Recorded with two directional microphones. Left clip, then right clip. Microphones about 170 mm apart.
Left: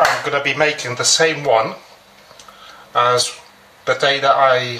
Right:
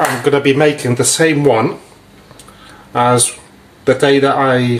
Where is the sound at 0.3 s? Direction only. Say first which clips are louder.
Right 5 dB; 45° right (ahead or behind).